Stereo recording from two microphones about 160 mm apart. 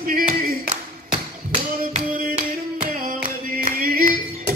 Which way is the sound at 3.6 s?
60° right (ahead or behind).